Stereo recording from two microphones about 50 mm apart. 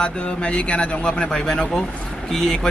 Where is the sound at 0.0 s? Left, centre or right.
Left.